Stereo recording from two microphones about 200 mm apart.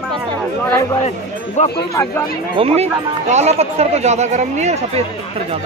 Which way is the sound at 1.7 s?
15° left (ahead or behind).